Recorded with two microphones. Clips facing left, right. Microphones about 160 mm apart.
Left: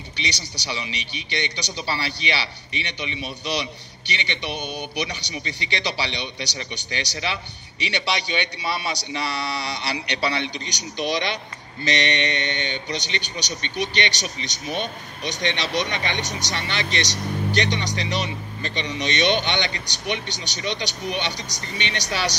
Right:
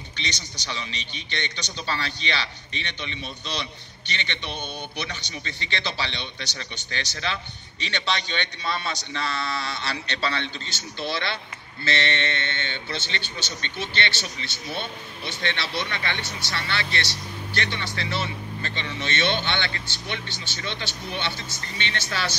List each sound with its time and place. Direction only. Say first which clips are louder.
0.2 s speech: left 3 dB; 10° left (ahead or behind)